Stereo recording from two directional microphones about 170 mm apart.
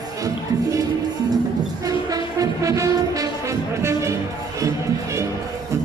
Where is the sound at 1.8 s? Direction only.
20° right (ahead or behind).